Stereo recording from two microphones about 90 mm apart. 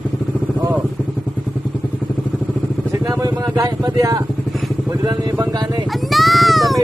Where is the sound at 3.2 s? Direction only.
40° right (ahead or behind).